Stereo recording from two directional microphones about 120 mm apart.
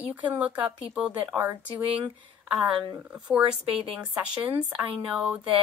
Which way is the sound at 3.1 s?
5° right (ahead or behind).